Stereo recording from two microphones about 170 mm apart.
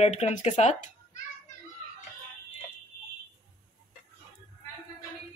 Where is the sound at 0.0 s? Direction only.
40° left (ahead or behind).